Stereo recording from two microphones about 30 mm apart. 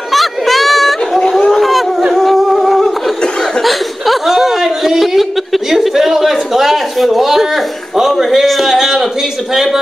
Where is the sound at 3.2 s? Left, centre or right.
Left.